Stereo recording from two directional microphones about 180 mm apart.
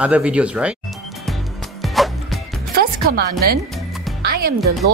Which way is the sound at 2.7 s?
55° right (ahead or behind).